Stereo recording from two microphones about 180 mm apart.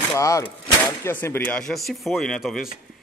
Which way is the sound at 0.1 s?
15° left (ahead or behind).